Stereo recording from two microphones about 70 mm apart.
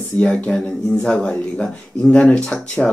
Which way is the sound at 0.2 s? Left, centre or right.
Centre.